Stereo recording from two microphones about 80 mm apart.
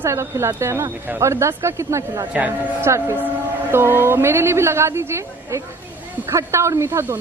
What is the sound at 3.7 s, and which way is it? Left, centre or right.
A woman's voice, right.